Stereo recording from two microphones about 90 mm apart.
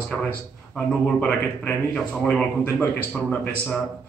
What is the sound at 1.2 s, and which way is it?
A man's voice, 15° left (ahead or behind).